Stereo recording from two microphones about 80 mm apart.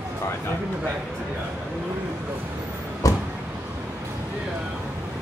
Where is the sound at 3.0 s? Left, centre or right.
Left.